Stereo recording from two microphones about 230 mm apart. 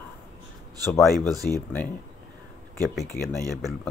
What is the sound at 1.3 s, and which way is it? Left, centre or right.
Speech, centre.